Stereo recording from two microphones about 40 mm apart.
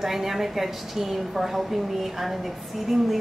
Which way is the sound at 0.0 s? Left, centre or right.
Centre.